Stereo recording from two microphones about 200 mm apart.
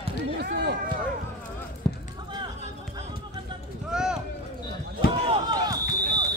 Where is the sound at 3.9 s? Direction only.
5° right (ahead or behind).